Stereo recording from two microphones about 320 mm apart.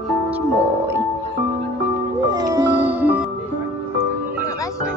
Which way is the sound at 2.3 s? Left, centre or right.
Centre.